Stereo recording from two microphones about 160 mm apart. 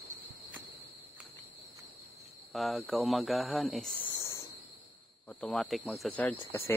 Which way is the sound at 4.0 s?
15° left (ahead or behind).